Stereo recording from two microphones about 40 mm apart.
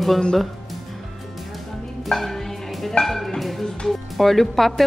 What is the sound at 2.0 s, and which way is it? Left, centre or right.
Music, centre.